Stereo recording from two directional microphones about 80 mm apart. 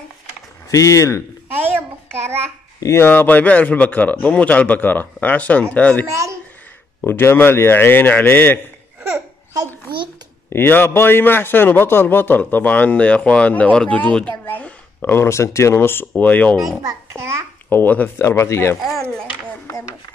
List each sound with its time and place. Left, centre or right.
0.7 s speech: left
1.5 s a sound: right
2.8 s speech: left
3.1 s a man's voice: left
6.0 s a child's voice: right
7.1 s a man's voice: left
10.5 s a man's voice: left
16.8 s a child's voice: right
17.6 s speech: left
18.8 s speech: centre